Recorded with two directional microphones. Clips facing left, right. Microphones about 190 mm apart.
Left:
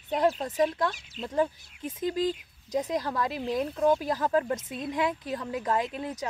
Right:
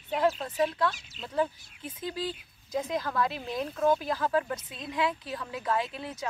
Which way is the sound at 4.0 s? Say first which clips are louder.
Left 2 dB; 40° left (ahead or behind).